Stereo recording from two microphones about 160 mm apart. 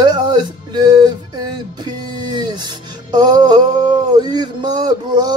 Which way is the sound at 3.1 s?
25° right (ahead or behind).